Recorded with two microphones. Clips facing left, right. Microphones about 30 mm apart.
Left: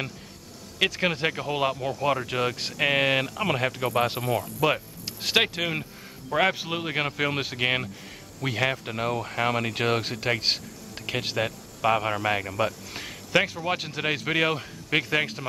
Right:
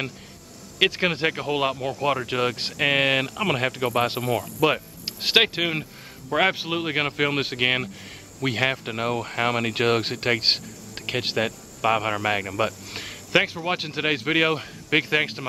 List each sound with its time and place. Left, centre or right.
0.7 s speech: right
5.0 s speech: right